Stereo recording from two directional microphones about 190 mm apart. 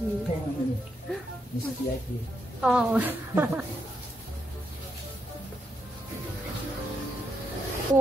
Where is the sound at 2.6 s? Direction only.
5° right (ahead or behind).